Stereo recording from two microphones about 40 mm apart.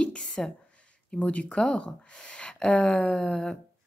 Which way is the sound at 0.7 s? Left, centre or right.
Left.